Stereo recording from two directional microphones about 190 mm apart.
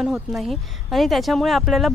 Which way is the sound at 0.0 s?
Centre (ahead or behind).